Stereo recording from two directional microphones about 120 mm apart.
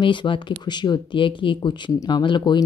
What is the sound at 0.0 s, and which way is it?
A woman's voice, 45° left (ahead or behind).